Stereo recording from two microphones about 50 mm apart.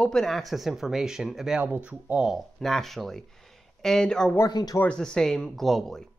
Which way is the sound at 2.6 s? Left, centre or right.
Centre.